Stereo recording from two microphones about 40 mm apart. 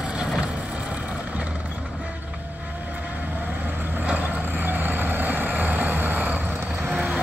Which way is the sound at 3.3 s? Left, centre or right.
Right.